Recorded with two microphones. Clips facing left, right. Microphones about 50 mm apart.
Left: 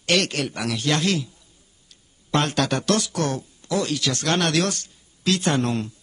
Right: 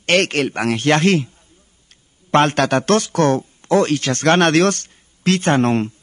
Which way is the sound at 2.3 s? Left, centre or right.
Right.